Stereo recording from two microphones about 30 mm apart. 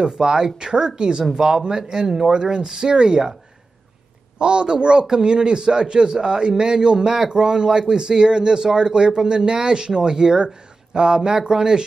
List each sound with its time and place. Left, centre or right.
0.0 s speech: right
1.3 s speech: centre
2.3 s speech: right
2.6 s speech: centre
2.9 s speech: right
4.4 s speech: right
7.1 s speech: centre
7.3 s speech: right